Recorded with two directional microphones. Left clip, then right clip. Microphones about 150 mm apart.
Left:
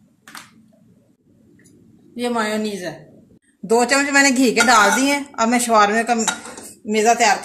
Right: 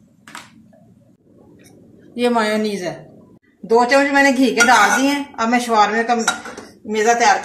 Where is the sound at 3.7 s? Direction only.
90° left.